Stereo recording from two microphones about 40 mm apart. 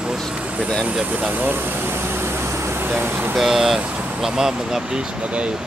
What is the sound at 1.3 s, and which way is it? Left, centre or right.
Air conditioning, right.